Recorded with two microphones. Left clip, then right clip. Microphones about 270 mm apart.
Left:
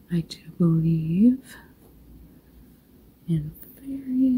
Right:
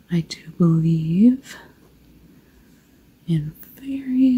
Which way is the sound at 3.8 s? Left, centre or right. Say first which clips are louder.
Right 5 dB; centre.